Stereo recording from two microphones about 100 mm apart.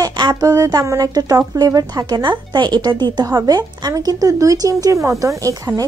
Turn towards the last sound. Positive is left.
turn(degrees=-35)  # may be behind; listen again after turning